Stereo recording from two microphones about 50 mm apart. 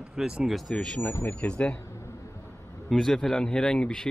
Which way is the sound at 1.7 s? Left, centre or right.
Left.